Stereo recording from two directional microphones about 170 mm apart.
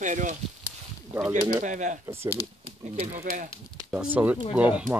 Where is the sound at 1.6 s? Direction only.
45° right (ahead or behind).